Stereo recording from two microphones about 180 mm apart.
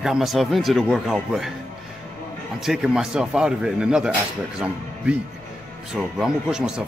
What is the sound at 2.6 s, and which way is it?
Speech, centre (ahead or behind).